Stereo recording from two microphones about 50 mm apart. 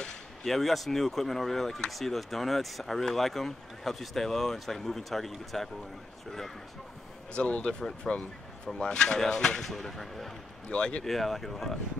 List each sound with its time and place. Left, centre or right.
0.0 s speech: centre
7.3 s speech: left; by 10.3 s centre
10.7 s speech: left
11.1 s speech: centre